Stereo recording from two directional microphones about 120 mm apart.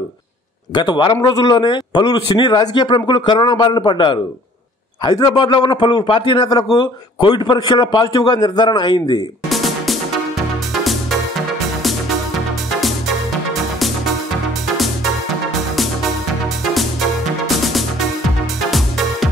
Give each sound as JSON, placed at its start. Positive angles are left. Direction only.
{"t": 0.7, "sound": "a man's voice", "side_deg": 40}
{"t": 9.5, "sound": "music", "side_deg": 0}
{"t": 13.5, "sound": "music", "side_deg": 0}
{"t": 18.7, "sound": "music", "side_deg": 0}